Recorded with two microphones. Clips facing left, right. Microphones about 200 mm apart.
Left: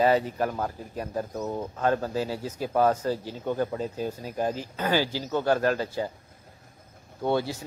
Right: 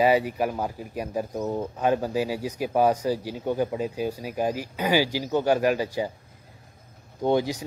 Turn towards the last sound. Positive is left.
turn(degrees=-15)  # may be behind; listen again after turning